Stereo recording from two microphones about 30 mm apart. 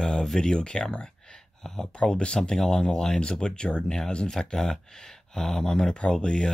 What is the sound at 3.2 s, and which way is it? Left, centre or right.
Speech, left.